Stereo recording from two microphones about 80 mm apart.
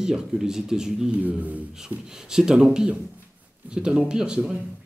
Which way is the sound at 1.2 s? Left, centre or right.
Centre.